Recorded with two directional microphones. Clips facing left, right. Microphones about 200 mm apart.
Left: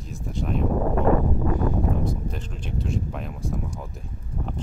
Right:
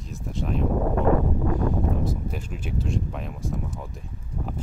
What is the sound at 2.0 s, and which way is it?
Speech, 10° right (ahead or behind).